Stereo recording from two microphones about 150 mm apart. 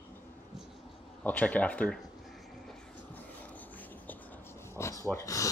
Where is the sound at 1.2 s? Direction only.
10° left (ahead or behind).